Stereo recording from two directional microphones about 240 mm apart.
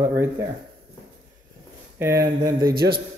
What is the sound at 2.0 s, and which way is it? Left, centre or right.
Speech, centre.